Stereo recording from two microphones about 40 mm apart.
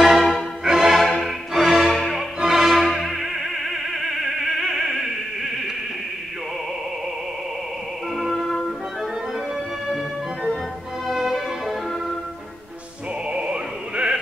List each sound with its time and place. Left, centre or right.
0.0 s music: centre
8.5 s music: centre
11.1 s music: centre
13.3 s music: right